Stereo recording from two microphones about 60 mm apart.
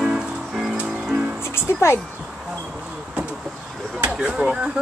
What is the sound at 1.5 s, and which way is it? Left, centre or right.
Music, left.